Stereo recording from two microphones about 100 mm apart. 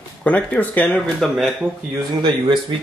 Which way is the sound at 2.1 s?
50° right (ahead or behind).